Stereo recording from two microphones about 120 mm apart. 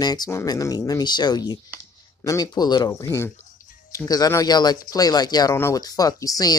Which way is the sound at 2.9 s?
25° left (ahead or behind).